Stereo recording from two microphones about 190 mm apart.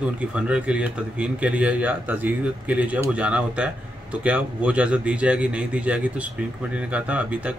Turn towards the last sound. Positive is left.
turn(degrees=-5)  # may be behind; listen again after turning